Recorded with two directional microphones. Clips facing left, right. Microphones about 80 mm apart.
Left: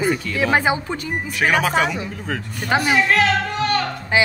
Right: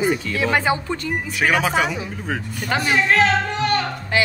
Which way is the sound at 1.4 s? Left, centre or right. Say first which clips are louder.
Left 1 dB; centre.